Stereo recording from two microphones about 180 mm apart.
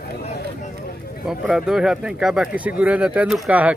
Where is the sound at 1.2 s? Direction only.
Centre (ahead or behind).